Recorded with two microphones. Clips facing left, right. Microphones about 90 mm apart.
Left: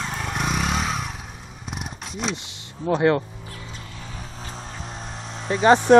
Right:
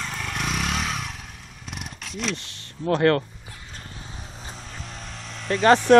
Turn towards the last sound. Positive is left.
turn(degrees=20)  # may be behind; listen again after turning